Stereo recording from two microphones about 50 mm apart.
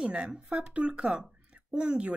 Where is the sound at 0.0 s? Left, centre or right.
Right.